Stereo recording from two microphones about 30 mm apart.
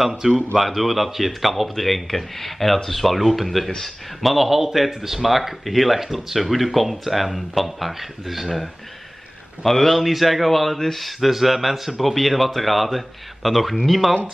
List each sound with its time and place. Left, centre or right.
0.2 s speech: right
0.6 s speech: centre
9.7 s a man's voice: centre
9.9 s speech: centre